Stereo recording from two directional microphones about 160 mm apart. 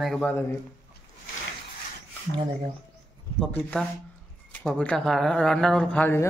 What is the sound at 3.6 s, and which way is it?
A man's voice, centre (ahead or behind).